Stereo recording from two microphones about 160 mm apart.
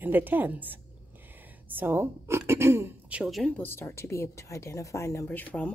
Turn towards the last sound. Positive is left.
turn(degrees=10)  # may be behind; listen again after turning